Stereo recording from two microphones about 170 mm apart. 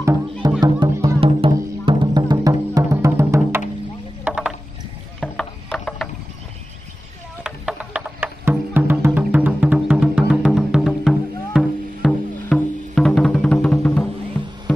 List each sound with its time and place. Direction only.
0.0 s music: 15° right (ahead or behind)
4.2 s rowboat: 5° right (ahead or behind)
5.2 s a sound: 5° left (ahead or behind)
7.4 s music: 5° right (ahead or behind)